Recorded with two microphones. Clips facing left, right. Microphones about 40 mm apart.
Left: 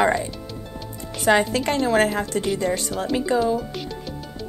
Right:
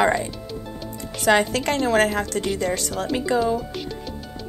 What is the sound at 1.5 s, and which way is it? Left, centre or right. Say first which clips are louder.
A woman's voice: even; right.